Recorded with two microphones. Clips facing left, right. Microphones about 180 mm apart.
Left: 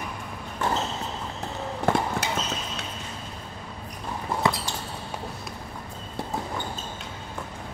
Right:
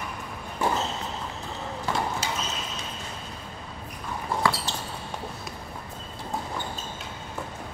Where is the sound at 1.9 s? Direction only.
55° left (ahead or behind).